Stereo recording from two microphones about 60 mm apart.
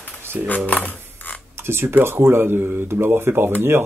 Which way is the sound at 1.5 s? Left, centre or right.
Right.